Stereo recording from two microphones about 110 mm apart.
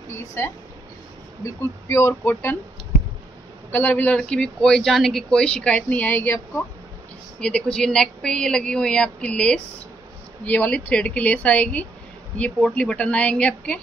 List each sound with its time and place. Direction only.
0.1 s a sound: 25° left (ahead or behind)
1.4 s speech: 25° left (ahead or behind)
3.7 s speech: 15° left (ahead or behind)
7.3 s speech: 10° left (ahead or behind)